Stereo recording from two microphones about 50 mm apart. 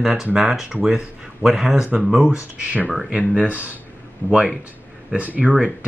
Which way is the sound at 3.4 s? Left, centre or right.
Right.